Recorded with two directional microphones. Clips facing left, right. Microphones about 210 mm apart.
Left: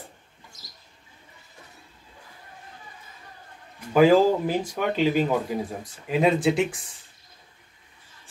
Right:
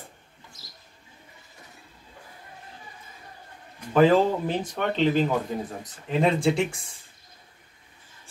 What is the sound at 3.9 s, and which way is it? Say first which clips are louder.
Speech: left 2 dB; 10° left (ahead or behind).